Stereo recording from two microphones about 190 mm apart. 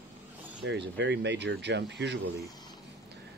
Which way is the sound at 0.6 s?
70° right (ahead or behind).